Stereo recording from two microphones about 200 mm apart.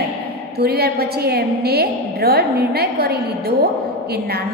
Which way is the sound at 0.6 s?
50° right (ahead or behind).